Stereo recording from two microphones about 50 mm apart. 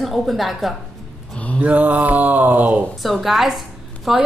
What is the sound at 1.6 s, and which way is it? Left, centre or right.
Mantra, right.